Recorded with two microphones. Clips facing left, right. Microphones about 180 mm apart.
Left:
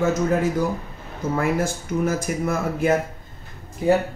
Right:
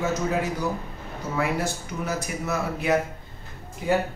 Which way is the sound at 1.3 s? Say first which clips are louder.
Left 3 dB; 50° left (ahead or behind).